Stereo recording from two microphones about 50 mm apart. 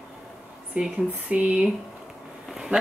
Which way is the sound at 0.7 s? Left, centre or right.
Right.